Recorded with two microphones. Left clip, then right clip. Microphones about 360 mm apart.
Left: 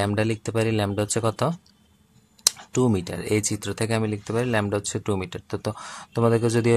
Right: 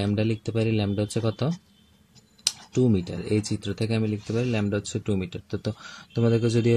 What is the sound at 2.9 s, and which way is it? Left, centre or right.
Speech, left.